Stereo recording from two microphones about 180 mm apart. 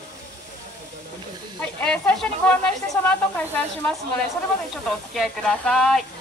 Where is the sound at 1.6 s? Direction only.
5° left (ahead or behind).